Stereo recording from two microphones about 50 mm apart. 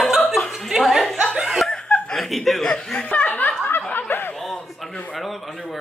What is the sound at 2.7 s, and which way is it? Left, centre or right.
Chuckle, left.